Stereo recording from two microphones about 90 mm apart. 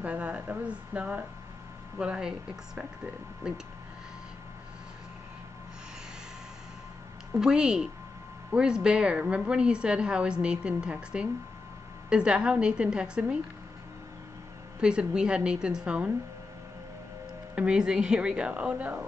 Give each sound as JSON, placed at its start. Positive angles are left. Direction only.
{"t": 0.0, "sound": "a woman's voice", "side_deg": -15}
{"t": 7.3, "sound": "a woman's voice", "side_deg": -10}
{"t": 14.8, "sound": "a woman's voice", "side_deg": -10}
{"t": 17.6, "sound": "a woman's voice", "side_deg": -10}